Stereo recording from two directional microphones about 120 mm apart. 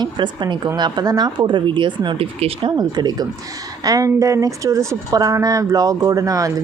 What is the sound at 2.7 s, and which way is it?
Speech, 35° right (ahead or behind).